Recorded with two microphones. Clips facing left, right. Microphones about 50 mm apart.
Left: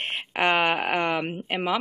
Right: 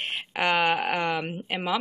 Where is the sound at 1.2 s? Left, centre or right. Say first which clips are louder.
Left 2 dB; centre.